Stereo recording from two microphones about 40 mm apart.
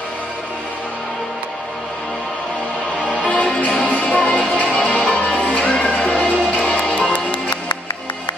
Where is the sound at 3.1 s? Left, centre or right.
Left.